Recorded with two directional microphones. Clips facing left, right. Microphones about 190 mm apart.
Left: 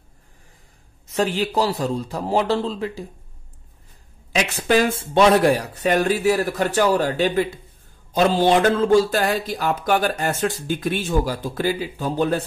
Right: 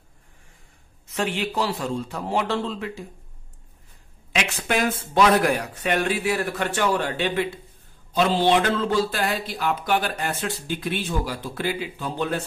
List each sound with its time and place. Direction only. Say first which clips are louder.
1.0 s speech: left 5 dB; 40° left (ahead or behind)
4.3 s speech: left 6 dB; 35° left (ahead or behind)